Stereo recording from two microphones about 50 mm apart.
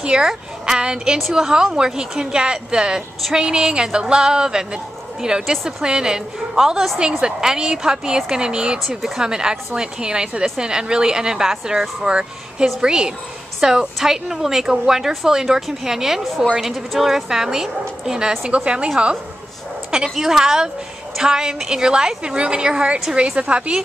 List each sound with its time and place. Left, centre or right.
0.0 s speech: centre
7.0 s a woman's voice: centre
8.7 s speech: centre
9.1 s speech: centre
19.9 s a woman's voice: centre